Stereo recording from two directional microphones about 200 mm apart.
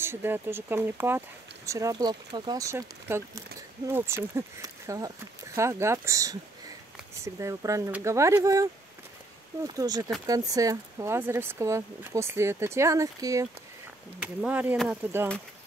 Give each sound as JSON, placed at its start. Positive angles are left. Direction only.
{"t": 0.0, "sound": "speech", "side_deg": -10}
{"t": 7.3, "sound": "speech", "side_deg": -15}